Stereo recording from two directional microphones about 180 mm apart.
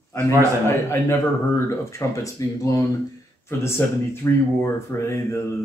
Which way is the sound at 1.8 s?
15° left (ahead or behind).